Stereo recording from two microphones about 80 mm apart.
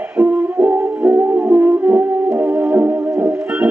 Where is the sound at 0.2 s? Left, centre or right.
Right.